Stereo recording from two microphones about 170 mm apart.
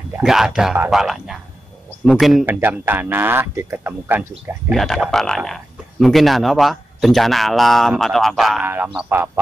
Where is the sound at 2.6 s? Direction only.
10° right (ahead or behind).